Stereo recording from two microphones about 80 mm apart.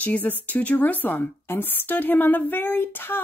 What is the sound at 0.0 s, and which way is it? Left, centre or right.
A woman's voice, centre.